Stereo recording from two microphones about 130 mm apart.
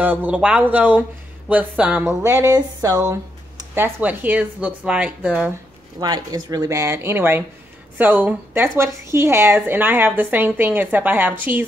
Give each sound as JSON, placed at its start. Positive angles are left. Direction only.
{"t": 0.0, "sound": "a woman's voice", "side_deg": -15}
{"t": 2.2, "sound": "speech", "side_deg": -25}
{"t": 3.7, "sound": "a woman's voice", "side_deg": -15}
{"t": 5.9, "sound": "a woman's voice", "side_deg": -30}